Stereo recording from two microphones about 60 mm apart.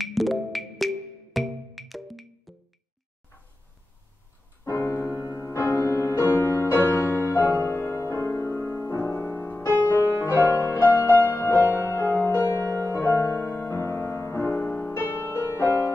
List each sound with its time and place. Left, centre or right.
0.0 s music: centre
4.6 s music: left
11.6 s music: right
11.9 s music: left
15.3 s music: left